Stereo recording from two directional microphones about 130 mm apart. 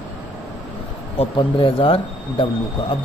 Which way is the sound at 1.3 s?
45° left (ahead or behind).